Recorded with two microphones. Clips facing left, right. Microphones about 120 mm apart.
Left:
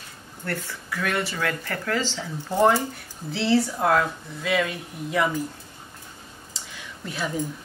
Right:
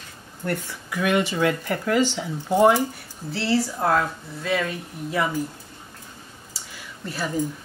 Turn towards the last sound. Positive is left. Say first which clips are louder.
# right 1 dB
turn(degrees=0)  # may be behind; listen again after turning